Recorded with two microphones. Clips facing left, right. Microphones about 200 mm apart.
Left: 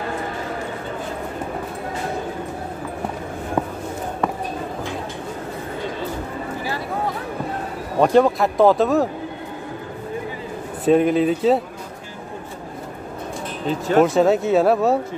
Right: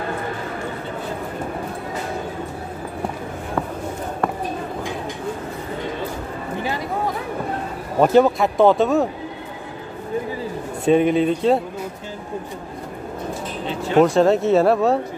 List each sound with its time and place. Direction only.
8.0 s speech: 5° right (ahead or behind)
10.9 s speech: centre (ahead or behind)
13.7 s speech: 45° left (ahead or behind)
14.0 s speech: centre (ahead or behind)